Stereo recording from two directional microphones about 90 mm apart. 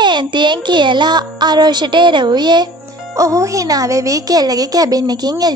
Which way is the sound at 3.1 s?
35° right (ahead or behind).